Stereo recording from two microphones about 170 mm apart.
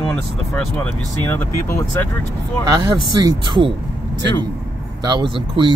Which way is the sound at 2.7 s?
25° right (ahead or behind).